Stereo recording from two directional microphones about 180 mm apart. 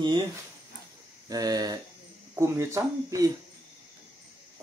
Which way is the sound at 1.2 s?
20° right (ahead or behind).